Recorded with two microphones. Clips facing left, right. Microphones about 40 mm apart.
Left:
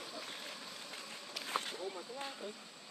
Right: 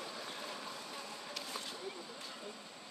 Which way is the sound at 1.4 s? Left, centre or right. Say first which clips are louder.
Left 9 dB; left.